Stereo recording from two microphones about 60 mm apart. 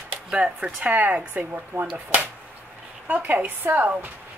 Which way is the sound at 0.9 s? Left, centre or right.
Right.